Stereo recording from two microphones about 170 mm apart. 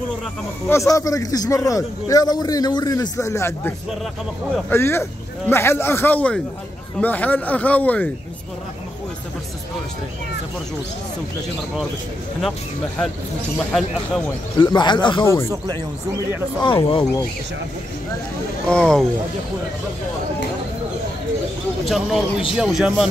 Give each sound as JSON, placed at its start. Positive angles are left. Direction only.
{"t": 0.7, "sound": "a man's voice", "side_deg": 15}
{"t": 13.6, "sound": "speech", "side_deg": 5}
{"t": 14.6, "sound": "a man's voice", "side_deg": 25}
{"t": 15.5, "sound": "speech", "side_deg": -25}
{"t": 16.6, "sound": "speech", "side_deg": 30}
{"t": 18.7, "sound": "speech", "side_deg": 5}
{"t": 21.8, "sound": "speech", "side_deg": 0}